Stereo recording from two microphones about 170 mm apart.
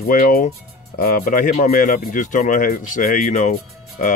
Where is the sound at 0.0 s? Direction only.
60° left (ahead or behind).